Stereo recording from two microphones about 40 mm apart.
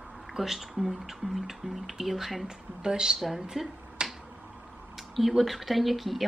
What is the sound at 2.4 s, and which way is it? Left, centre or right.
Speech, centre.